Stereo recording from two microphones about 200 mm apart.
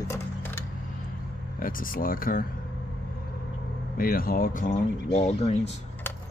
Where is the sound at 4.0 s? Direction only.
45° left (ahead or behind).